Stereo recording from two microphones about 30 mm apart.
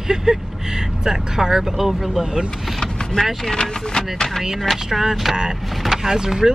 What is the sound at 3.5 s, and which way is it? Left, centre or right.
Speech, left.